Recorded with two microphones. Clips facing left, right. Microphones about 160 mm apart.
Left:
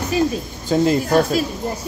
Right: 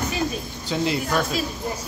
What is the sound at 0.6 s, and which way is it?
Speech, 45° left (ahead or behind).